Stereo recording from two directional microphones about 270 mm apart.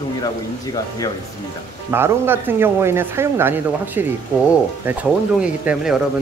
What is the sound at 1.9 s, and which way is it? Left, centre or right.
Speech, centre.